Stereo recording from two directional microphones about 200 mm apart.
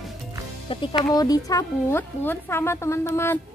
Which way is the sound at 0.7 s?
25° left (ahead or behind).